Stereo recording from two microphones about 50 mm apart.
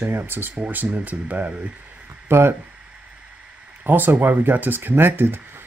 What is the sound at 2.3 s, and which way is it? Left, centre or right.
Speech, right.